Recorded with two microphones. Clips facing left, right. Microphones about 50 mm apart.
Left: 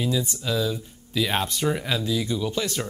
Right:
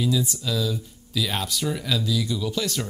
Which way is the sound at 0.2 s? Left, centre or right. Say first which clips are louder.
Left 1 dB; left.